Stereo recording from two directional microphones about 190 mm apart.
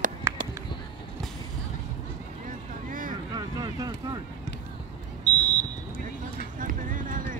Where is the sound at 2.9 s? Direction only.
45° right (ahead or behind).